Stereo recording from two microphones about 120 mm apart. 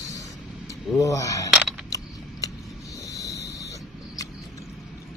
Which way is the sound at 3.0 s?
30° left (ahead or behind).